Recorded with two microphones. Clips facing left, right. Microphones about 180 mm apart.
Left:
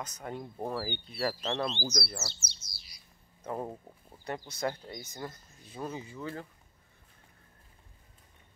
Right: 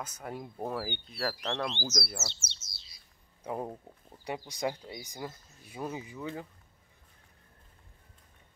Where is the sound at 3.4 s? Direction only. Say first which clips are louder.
Even; 15° right (ahead or behind).